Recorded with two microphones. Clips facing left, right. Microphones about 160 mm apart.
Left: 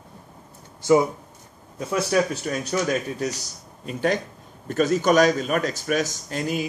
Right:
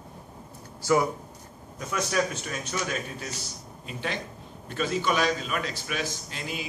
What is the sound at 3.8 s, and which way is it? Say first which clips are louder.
A man's voice: left 10 dB; 45° left (ahead or behind).